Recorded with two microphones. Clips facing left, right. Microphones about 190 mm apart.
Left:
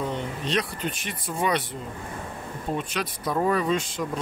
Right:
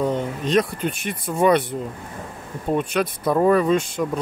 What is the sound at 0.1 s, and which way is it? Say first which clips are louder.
Speech: right 7 dB; 45° right (ahead or behind).